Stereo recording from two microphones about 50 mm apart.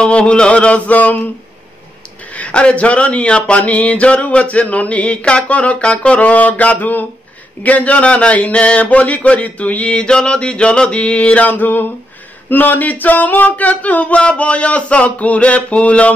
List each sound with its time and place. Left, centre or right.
0.0 s speech: left
2.3 s speech: left